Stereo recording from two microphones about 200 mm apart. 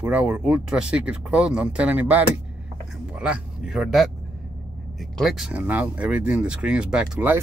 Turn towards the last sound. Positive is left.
turn(degrees=-10)  # may be behind; listen again after turning